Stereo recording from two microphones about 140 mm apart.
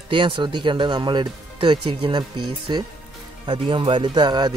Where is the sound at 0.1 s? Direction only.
35° right (ahead or behind).